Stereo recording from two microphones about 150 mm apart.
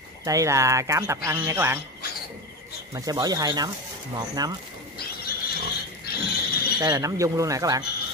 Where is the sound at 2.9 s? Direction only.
25° right (ahead or behind).